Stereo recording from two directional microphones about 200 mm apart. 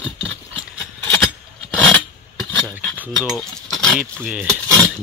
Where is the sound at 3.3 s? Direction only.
Centre (ahead or behind).